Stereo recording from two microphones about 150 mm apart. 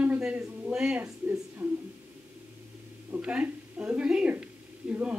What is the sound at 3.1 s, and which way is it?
A woman's voice, 10° right (ahead or behind).